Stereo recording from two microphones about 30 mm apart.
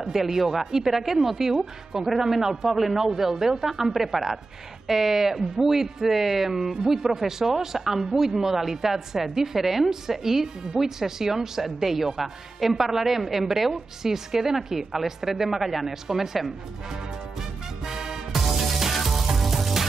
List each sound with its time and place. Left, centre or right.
0.0 s a woman's voice: centre
17.8 s music: centre